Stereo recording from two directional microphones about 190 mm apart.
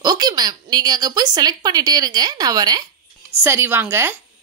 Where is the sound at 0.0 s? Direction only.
20° right (ahead or behind).